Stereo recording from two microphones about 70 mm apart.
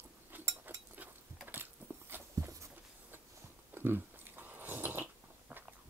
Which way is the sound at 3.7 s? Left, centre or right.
Right.